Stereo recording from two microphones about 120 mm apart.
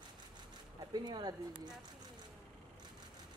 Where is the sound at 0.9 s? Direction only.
35° right (ahead or behind).